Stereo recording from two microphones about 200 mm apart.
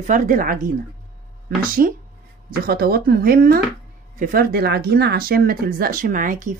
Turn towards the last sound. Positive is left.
turn(degrees=-40)  # may be behind; listen again after turning